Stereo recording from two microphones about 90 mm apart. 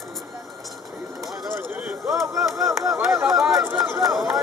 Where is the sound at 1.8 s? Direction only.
5° right (ahead or behind).